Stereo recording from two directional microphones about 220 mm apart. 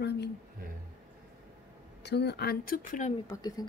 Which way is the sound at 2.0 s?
50° left (ahead or behind).